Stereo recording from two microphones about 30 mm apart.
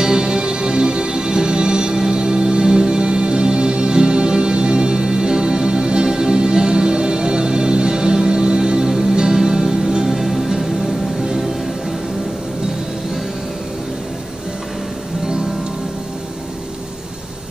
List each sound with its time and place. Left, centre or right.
0.0 s music: right
10.1 s music: centre